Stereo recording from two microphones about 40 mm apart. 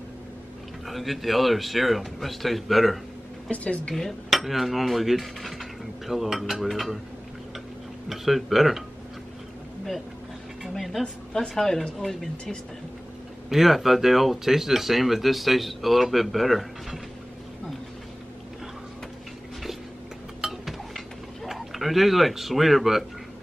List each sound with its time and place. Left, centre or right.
0.8 s speech: centre
3.4 s a woman's voice: left
4.3 s cutlery: centre
8.1 s speech: centre
10.7 s speech: centre
13.5 s speech: centre
20.4 s a sound: centre
21.5 s speech: centre